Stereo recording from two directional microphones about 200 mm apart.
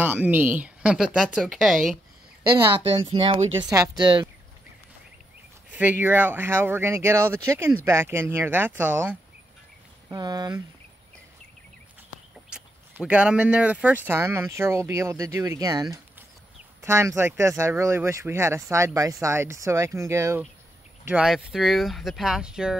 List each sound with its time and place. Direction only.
0.0 s speech: 10° right (ahead or behind)
2.9 s speech: 25° right (ahead or behind)
5.8 s speech: 10° right (ahead or behind)
10.0 s speech: 20° right (ahead or behind)
12.4 s speech: 5° right (ahead or behind)